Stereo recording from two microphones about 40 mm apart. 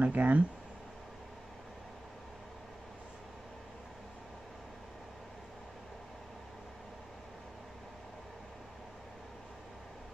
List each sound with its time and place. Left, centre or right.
0.0 s speech: right